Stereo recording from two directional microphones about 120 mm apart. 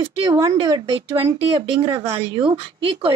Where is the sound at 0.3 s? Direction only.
30° right (ahead or behind).